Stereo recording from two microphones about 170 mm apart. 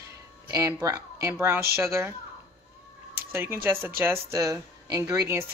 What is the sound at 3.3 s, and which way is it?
Speech, 15° right (ahead or behind).